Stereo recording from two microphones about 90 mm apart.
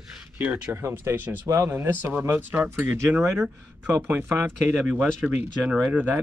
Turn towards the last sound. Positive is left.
turn(degrees=-20)  # may be behind; listen again after turning